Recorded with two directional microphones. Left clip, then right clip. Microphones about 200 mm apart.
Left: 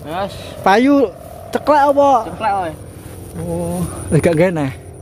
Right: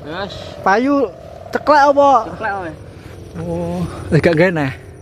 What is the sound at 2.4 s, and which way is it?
Speech, 15° left (ahead or behind).